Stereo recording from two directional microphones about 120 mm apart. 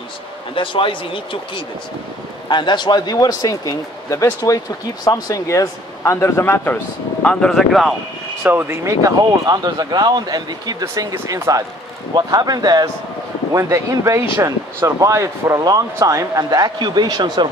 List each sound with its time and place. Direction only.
0.6 s a man's voice: 45° left (ahead or behind); by 6.8 s 15° left (ahead or behind)
7.2 s speech: 5° left (ahead or behind)
8.5 s speech: 20° right (ahead or behind); by 17.5 s 40° right (ahead or behind)